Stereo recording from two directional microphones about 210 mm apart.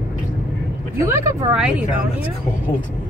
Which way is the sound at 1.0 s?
15° right (ahead or behind).